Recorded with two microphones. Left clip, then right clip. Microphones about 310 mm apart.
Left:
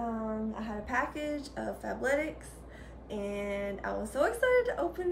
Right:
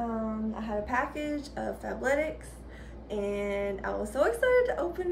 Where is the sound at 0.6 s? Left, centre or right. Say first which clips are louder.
Right 4 dB; centre.